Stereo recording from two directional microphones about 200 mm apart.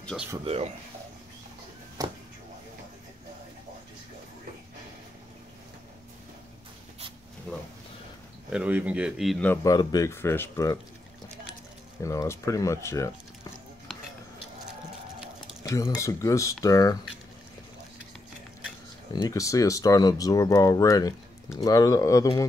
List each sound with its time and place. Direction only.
0.0 s speech: centre (ahead or behind)
2.0 s speech: 20° right (ahead or behind)
7.5 s a sound: 5° left (ahead or behind)
8.5 s speech: 5° right (ahead or behind)
9.6 s speech: 20° left (ahead or behind)
12.0 s speech: 15° left (ahead or behind)
15.6 s speech: 15° left (ahead or behind)
19.1 s speech: 15° left (ahead or behind)